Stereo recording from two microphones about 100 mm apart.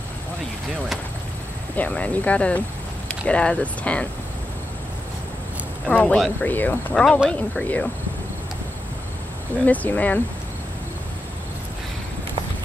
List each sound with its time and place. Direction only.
1.8 s speech: 15° left (ahead or behind)
5.9 s speech: 10° left (ahead or behind)
9.7 s speech: 15° left (ahead or behind)